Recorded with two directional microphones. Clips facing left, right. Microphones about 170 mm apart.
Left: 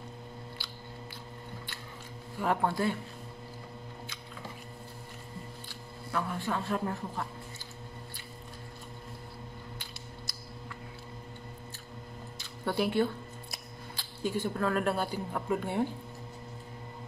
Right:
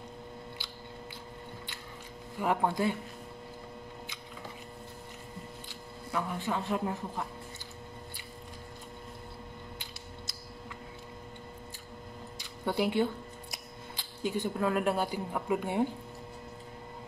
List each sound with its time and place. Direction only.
2.3 s a man's voice: 15° right (ahead or behind)
6.1 s a man's voice: 15° right (ahead or behind)
12.4 s speech: 15° right (ahead or behind)